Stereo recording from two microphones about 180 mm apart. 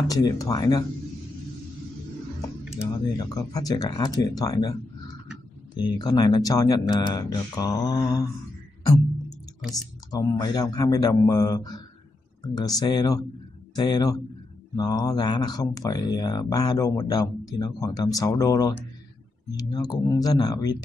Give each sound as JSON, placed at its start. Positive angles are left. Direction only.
{"t": 0.1, "sound": "speech", "side_deg": 20}
{"t": 3.2, "sound": "speech", "side_deg": 20}
{"t": 10.1, "sound": "speech", "side_deg": 20}